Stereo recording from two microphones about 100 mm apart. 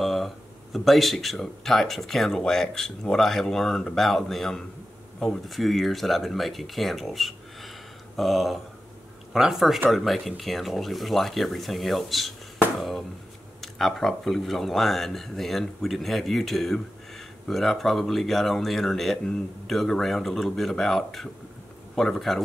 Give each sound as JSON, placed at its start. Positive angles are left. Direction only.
{"t": 0.0, "sound": "a sound", "side_deg": 0}
{"t": 0.7, "sound": "speech", "side_deg": 0}
{"t": 13.6, "sound": "speech", "side_deg": 0}